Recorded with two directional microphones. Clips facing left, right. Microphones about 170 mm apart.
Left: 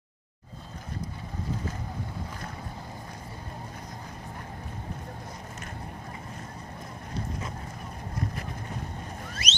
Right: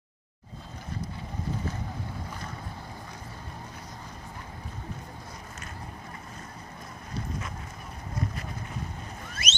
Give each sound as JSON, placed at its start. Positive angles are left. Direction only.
{"t": 9.3, "sound": "boat", "side_deg": -50}